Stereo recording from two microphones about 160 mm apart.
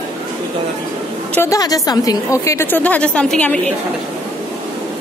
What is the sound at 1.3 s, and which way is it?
Speech, 15° left (ahead or behind).